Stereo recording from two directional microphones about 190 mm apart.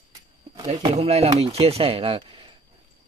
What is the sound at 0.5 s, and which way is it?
Speech, 20° right (ahead or behind).